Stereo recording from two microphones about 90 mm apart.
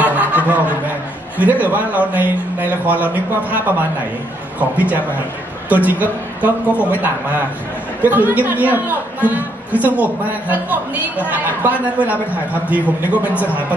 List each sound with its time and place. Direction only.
0.0 s chuckle: 20° right (ahead or behind)
1.4 s a man's voice: 20° right (ahead or behind)
4.6 s a man's voice: 15° right (ahead or behind)
8.0 s a man's voice: 20° right (ahead or behind)